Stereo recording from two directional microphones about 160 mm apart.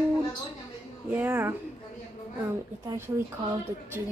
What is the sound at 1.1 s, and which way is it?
Speech, 15° right (ahead or behind).